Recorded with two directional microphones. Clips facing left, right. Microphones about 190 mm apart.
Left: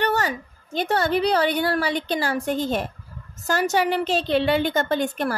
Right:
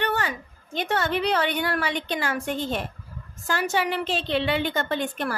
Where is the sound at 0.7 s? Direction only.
35° left (ahead or behind).